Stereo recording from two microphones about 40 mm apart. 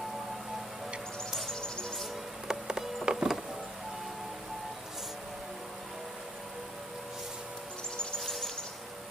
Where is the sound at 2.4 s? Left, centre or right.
Centre.